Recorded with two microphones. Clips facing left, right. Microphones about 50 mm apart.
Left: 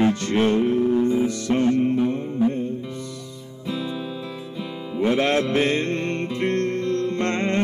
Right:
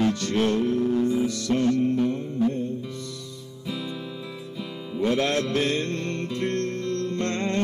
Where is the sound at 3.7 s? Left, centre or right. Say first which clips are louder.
Left 4 dB; centre.